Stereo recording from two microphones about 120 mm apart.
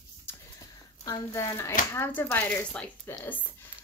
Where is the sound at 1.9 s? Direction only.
20° left (ahead or behind).